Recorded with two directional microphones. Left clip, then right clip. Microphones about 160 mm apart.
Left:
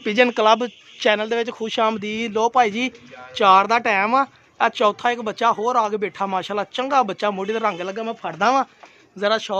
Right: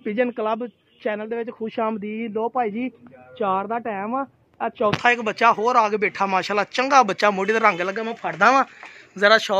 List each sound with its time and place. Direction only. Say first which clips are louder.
0.0 s speech: left 7 dB; 30° left (ahead or behind)
1.6 s speech: left 5 dB; 15° left (ahead or behind)
5.0 s speech: right 2 dB; centre (ahead or behind)
8.0 s speech: right 2 dB; 10° left (ahead or behind)
9.1 s speech: right 4 dB; 10° right (ahead or behind)